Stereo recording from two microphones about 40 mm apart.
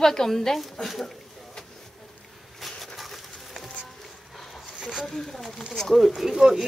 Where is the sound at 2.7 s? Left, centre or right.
Centre.